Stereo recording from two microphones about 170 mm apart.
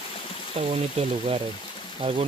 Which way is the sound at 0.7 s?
35° right (ahead or behind).